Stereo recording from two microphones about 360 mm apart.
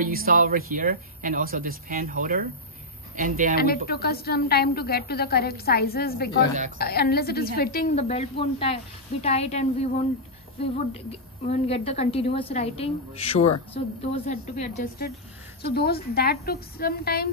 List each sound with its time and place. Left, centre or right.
0.0 s speech: right
3.5 s a woman's voice: left